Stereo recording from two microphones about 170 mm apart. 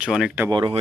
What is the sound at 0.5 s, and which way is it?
Speech, 30° right (ahead or behind).